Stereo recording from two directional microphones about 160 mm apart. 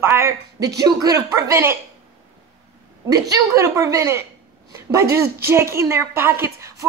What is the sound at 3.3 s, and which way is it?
A woman's voice, 20° right (ahead or behind).